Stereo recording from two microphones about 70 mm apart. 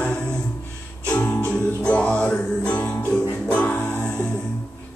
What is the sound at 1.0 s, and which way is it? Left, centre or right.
Music, centre.